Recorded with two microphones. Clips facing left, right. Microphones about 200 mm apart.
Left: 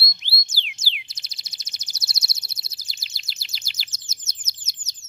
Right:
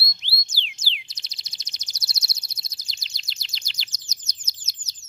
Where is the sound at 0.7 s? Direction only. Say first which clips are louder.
Left 1 dB; 5° left (ahead or behind).